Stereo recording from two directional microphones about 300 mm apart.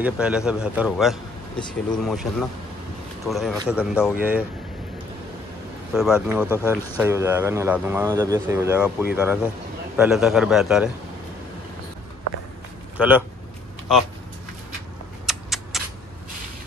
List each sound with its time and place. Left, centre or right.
0.0 s speech: centre
3.3 s speech: centre
5.9 s speech: centre
12.9 s a man's voice: centre
15.2 s a sound: centre